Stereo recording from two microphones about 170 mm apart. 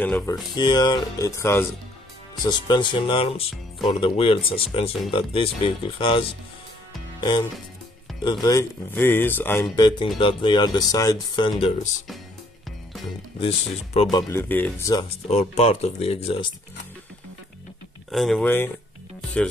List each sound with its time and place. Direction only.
0.0 s speech: 10° left (ahead or behind)
0.6 s speech: 25° left (ahead or behind)
2.4 s speech: 25° left (ahead or behind); by 9.7 s 10° left (ahead or behind)
9.8 s speech: 25° left (ahead or behind)
13.4 s speech: 35° left (ahead or behind)
14.1 s speech: 15° left (ahead or behind)
15.2 s speech: 40° left (ahead or behind)
18.1 s speech: centre (ahead or behind)